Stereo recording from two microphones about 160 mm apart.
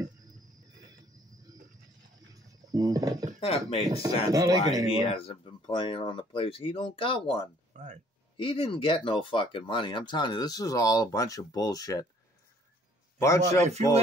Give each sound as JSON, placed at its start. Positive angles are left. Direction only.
{"t": 0.7, "sound": "a sound", "side_deg": -25}
{"t": 2.3, "sound": "a sound", "side_deg": -20}
{"t": 3.3, "sound": "speech", "side_deg": 35}
{"t": 3.9, "sound": "speech", "side_deg": -20}
{"t": 4.9, "sound": "speech", "side_deg": 35}
{"t": 7.7, "sound": "speech", "side_deg": -45}
{"t": 8.4, "sound": "speech", "side_deg": 35}
{"t": 13.2, "sound": "speech", "side_deg": 20}
{"t": 13.7, "sound": "speech", "side_deg": -45}